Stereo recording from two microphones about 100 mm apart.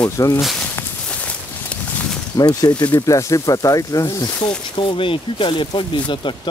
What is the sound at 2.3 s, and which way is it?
Speech, 40° left (ahead or behind).